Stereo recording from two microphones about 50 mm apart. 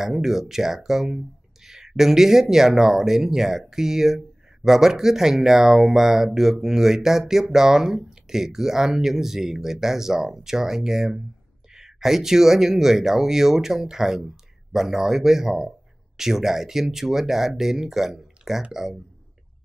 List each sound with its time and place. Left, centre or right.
0.0 s speech: centre